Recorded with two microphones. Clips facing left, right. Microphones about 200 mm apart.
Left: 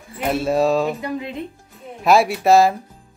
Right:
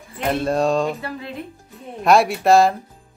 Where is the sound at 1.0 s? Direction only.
20° left (ahead or behind).